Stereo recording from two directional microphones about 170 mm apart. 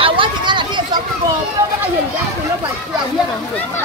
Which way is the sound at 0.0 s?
30° right (ahead or behind).